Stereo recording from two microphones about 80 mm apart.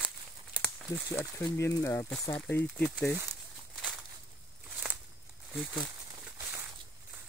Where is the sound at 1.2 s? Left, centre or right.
Left.